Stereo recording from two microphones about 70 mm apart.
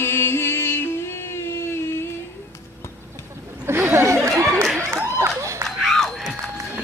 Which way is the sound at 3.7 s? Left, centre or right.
Right.